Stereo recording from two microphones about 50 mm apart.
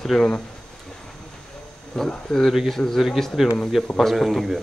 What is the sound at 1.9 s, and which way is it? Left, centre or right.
Speech, centre.